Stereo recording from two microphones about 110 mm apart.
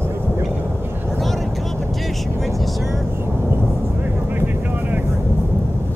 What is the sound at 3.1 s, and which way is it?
Vehicle, 20° right (ahead or behind).